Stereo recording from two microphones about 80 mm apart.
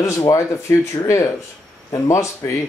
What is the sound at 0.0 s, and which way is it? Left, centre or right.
Speech, left.